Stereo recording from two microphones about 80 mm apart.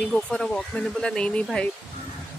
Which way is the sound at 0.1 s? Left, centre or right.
Centre.